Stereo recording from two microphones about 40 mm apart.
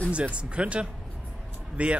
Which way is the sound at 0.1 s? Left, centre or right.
Right.